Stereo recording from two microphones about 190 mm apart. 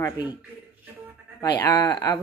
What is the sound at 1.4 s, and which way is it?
Speech, 20° left (ahead or behind).